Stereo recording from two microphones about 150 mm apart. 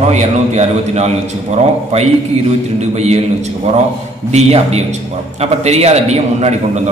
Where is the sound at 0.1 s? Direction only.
45° right (ahead or behind).